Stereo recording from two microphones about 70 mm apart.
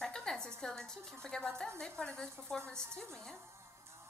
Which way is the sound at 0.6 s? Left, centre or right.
Centre.